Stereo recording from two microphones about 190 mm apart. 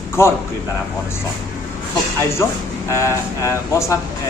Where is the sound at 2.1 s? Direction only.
10° left (ahead or behind).